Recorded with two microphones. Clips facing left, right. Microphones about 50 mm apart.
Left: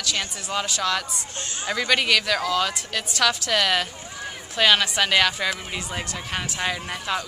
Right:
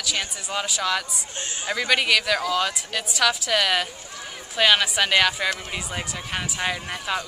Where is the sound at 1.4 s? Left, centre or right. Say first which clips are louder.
Right 1 dB; right.